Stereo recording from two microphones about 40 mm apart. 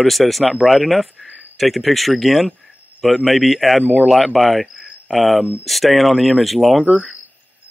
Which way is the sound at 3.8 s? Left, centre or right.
Right.